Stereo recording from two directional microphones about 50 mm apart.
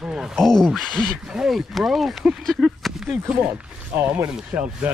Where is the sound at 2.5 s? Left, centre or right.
Centre.